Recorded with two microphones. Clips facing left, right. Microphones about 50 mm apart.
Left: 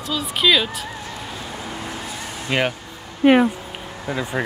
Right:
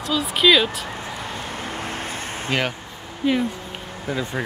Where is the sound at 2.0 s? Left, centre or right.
Right.